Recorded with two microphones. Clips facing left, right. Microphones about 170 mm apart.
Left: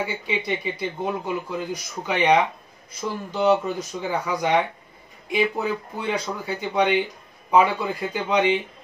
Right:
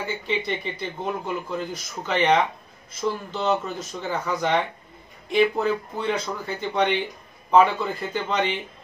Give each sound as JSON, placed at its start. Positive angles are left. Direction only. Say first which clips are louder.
{"t": 0.0, "sound": "speech", "louder": "even", "side_deg": 10}